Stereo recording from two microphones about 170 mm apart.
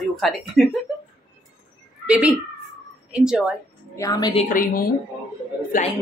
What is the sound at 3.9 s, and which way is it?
Speech, 20° left (ahead or behind).